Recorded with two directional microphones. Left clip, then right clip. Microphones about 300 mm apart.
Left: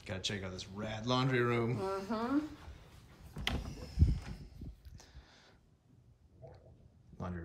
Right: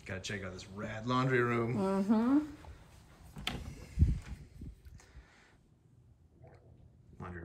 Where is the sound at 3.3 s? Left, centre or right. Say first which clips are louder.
Left 2 dB; centre.